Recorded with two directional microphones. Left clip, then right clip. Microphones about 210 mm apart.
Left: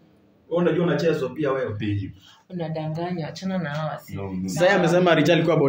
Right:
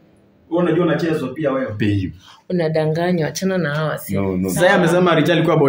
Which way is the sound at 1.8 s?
55° right (ahead or behind).